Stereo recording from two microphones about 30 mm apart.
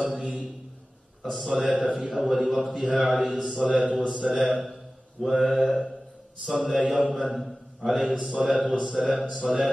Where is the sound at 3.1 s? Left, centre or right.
Centre.